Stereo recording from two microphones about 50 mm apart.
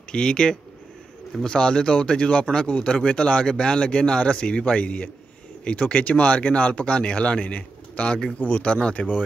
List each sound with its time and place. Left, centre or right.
0.1 s speech: centre